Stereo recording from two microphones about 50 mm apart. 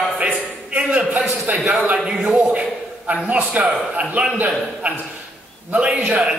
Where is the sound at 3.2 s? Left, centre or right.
Right.